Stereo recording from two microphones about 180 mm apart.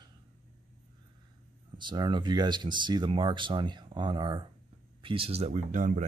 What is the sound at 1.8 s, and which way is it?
Speech, 25° right (ahead or behind).